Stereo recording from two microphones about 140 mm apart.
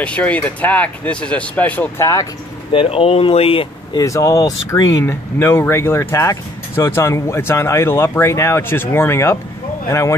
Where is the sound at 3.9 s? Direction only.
25° left (ahead or behind).